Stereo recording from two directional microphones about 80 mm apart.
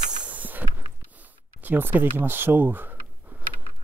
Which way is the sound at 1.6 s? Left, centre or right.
Right.